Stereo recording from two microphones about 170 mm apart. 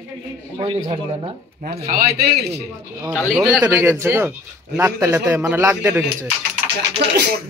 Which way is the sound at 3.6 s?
15° right (ahead or behind).